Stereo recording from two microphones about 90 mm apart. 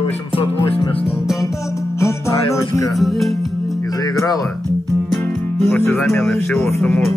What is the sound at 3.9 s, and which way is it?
Music, 45° left (ahead or behind).